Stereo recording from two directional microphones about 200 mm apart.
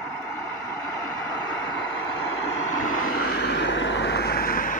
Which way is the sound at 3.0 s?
50° left (ahead or behind).